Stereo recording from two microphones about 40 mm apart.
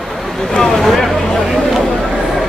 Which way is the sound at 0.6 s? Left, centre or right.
Centre.